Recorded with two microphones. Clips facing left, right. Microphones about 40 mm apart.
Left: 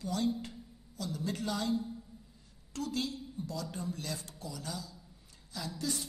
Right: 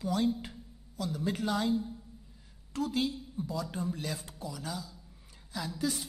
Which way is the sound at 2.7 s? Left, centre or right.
Centre.